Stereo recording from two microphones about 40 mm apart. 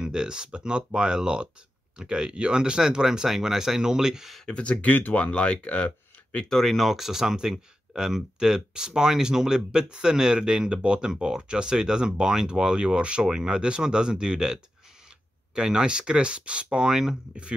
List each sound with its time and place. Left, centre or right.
0.0 s speech: centre
4.5 s speech: left
4.9 s speech: left
5.2 s speech: left
6.5 s speech: centre